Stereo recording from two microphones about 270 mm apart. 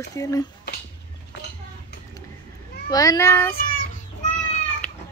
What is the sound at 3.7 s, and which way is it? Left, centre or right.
Child singing, left.